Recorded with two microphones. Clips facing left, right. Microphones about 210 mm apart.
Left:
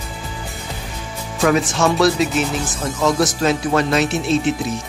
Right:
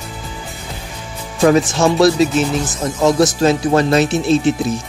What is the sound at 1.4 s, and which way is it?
Speech, 35° right (ahead or behind).